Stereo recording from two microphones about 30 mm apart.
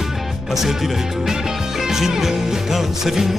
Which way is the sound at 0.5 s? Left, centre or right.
Centre.